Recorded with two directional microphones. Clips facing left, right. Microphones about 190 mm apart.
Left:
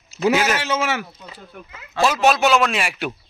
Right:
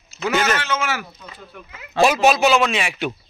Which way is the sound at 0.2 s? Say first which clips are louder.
Left 2 dB; 5° left (ahead or behind).